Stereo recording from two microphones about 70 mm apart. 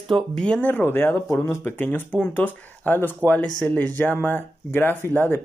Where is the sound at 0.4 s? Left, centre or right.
Centre.